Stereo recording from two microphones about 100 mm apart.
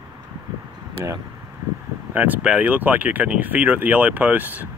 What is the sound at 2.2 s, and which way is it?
Speech, 15° right (ahead or behind).